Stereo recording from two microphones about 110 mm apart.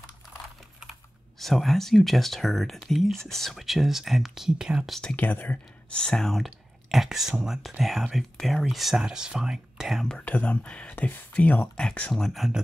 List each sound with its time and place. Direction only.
1.4 s speech: centre (ahead or behind)
5.1 s speech: 15° left (ahead or behind); by 10.1 s centre (ahead or behind)
10.1 s speech: 10° left (ahead or behind)